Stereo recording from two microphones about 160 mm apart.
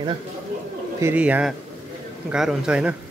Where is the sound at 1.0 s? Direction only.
10° right (ahead or behind).